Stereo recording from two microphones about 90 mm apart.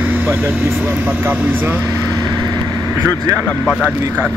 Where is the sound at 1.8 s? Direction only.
35° right (ahead or behind).